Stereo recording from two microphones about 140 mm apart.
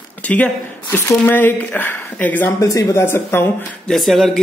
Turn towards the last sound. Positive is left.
turn(degrees=0)  # may be behind; listen again after turning